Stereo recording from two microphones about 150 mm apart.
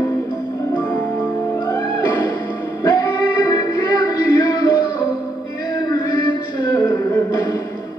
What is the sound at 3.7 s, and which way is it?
Music, 25° left (ahead or behind).